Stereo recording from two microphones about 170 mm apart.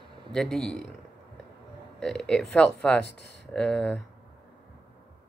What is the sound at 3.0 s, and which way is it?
Speech, 90° left.